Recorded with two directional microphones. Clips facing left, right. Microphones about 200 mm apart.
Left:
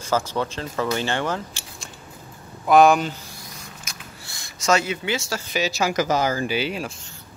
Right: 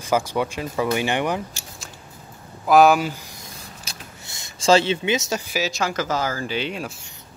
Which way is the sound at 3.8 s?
20° right (ahead or behind).